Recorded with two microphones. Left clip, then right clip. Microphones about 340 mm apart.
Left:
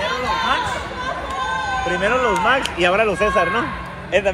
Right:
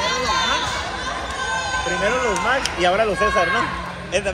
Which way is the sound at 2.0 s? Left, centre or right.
Left.